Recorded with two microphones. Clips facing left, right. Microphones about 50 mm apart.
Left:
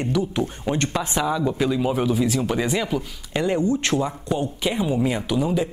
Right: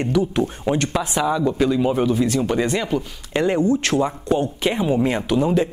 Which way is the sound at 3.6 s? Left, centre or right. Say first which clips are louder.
Right 3 dB; right.